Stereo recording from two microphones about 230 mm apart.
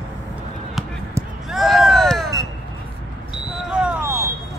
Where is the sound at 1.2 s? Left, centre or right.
Centre.